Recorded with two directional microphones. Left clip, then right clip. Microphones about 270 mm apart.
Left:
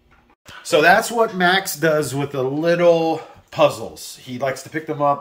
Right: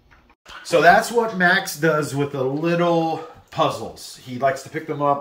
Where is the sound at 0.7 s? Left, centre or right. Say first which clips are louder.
Even; centre.